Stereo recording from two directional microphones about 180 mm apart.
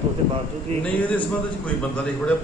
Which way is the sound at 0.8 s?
10° left (ahead or behind).